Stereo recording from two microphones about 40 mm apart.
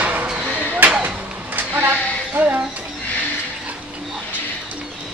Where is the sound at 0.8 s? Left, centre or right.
Right.